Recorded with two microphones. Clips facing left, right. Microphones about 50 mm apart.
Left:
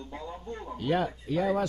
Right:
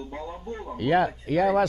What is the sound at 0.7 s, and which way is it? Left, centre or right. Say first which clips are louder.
Speech: right 6 dB; right.